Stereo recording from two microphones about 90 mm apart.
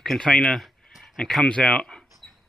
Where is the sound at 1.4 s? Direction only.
15° left (ahead or behind).